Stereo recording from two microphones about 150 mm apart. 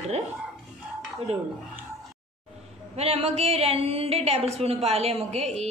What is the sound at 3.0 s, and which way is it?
A woman's voice, 40° right (ahead or behind).